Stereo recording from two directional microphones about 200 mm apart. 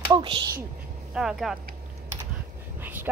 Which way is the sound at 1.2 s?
Centre (ahead or behind).